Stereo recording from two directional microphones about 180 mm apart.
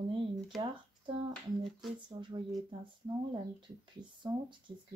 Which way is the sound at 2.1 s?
25° right (ahead or behind).